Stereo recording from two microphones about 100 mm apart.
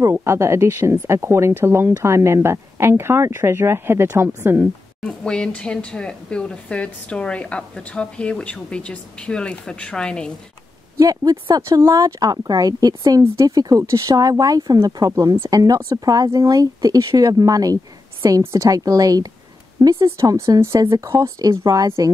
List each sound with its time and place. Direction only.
0.0 s speech: 25° right (ahead or behind)
5.0 s speech: 10° left (ahead or behind)
11.0 s speech: 35° right (ahead or behind)
15.3 s speech: 30° right (ahead or behind)